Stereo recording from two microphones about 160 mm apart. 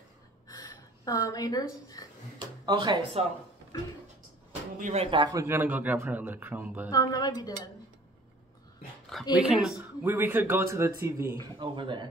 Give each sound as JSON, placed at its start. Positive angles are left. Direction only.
{"t": 0.5, "sound": "a sound", "side_deg": 25}
{"t": 2.6, "sound": "speech", "side_deg": -30}
{"t": 4.5, "sound": "a sound", "side_deg": -45}
{"t": 5.0, "sound": "a man's voice", "side_deg": -30}
{"t": 6.9, "sound": "speech", "side_deg": 20}
{"t": 9.3, "sound": "speech", "side_deg": -5}
{"t": 10.0, "sound": "a man's voice", "side_deg": -15}
{"t": 11.5, "sound": "speech", "side_deg": -30}